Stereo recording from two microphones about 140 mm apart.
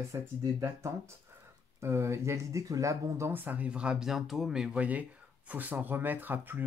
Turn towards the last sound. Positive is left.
turn(degrees=-15)  # may be behind; listen again after turning